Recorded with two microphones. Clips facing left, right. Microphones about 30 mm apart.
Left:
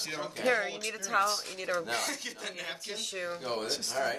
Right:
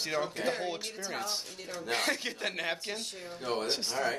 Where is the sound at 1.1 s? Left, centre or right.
Left.